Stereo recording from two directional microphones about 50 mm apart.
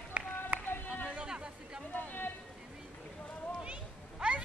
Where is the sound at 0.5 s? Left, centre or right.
Right.